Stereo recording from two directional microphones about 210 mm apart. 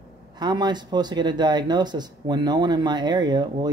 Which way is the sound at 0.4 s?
20° right (ahead or behind).